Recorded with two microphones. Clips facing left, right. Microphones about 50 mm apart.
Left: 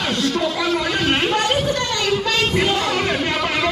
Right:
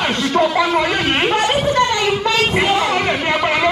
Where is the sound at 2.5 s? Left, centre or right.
Right.